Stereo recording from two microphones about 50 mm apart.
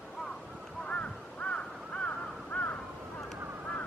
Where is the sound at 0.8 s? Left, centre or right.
Left.